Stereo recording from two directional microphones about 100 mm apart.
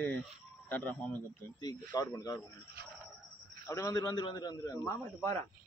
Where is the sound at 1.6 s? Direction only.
45° left (ahead or behind).